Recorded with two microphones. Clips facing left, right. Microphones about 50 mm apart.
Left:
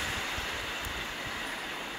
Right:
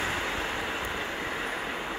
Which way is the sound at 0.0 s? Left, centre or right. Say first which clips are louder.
Right 4 dB; right.